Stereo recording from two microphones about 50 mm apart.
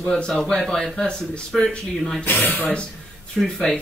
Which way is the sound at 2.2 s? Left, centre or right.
Left.